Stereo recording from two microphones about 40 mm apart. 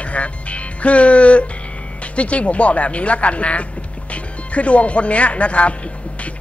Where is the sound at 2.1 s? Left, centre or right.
Left.